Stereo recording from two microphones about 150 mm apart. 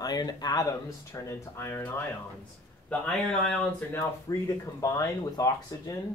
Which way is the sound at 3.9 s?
20° left (ahead or behind).